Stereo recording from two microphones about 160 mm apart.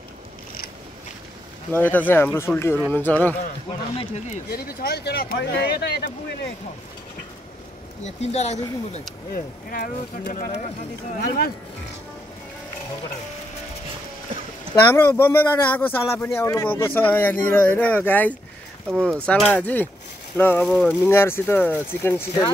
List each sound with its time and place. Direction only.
1.7 s a man's voice: 10° left (ahead or behind)
4.0 s speech: 45° left (ahead or behind)
4.5 s speech: 75° left (ahead or behind)
8.0 s speech: 45° left (ahead or behind)
9.3 s speech: 60° left (ahead or behind)
11.1 s speech: 80° left
15.0 s a man's voice: 15° left (ahead or behind)
18.9 s speech: 15° right (ahead or behind)
19.2 s a man's voice: 10° left (ahead or behind)